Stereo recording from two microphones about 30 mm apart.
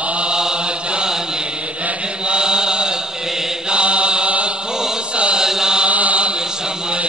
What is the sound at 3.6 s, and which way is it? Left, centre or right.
Mantra, right.